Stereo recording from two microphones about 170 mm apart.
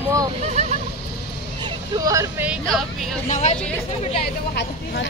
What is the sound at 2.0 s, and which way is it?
Speech, 20° right (ahead or behind).